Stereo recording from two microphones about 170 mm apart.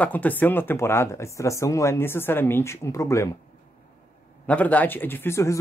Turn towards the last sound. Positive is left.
turn(degrees=15)  # may be behind; listen again after turning